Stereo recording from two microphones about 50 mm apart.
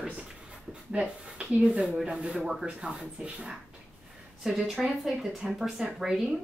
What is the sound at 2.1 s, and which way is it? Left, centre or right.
Speech, centre.